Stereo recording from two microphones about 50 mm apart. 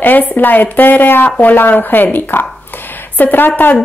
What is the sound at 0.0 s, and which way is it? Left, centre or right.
Speech, left.